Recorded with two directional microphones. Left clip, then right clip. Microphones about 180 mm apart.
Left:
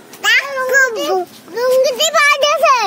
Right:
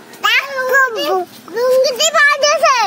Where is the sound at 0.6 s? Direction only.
20° left (ahead or behind).